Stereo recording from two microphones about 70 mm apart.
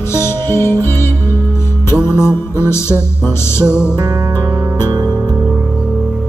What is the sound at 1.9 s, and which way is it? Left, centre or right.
Music, right.